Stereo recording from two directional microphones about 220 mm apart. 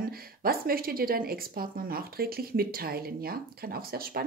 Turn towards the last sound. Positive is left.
turn(degrees=-45)  # may be behind; listen again after turning